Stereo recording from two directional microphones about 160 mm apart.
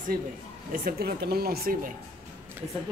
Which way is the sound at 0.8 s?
75° right (ahead or behind).